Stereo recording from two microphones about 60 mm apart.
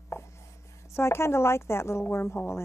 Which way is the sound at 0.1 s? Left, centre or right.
Left.